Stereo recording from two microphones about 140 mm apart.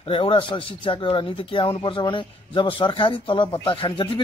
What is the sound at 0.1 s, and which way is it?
Speech, 40° left (ahead or behind).